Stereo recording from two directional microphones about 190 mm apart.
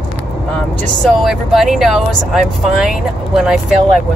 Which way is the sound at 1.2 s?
Centre (ahead or behind).